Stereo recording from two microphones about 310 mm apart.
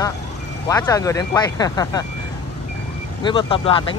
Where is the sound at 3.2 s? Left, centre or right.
Centre.